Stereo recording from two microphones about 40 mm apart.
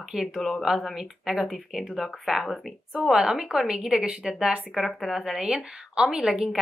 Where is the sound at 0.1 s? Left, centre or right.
Centre.